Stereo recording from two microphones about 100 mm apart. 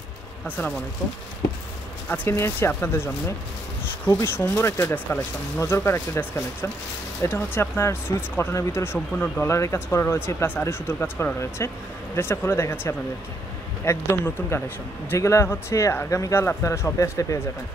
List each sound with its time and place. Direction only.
2.0 s speech: 20° left (ahead or behind)